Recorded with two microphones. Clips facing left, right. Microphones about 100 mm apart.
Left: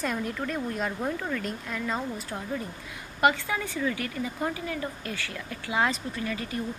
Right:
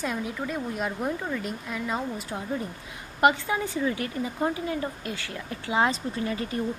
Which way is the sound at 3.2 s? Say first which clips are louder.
Right 2 dB; 25° right (ahead or behind).